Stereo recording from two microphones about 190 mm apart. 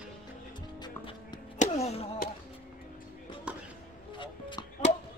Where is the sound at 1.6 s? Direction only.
35° left (ahead or behind).